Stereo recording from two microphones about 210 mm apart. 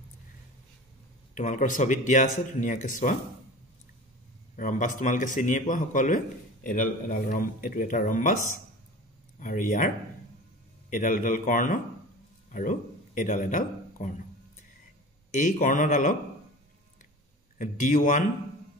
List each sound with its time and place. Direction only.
1.3 s a man's voice: 35° left (ahead or behind)
4.6 s a man's voice: 40° left (ahead or behind)
9.4 s a man's voice: 40° left (ahead or behind)
15.3 s a man's voice: 40° left (ahead or behind)
17.6 s a man's voice: 40° left (ahead or behind)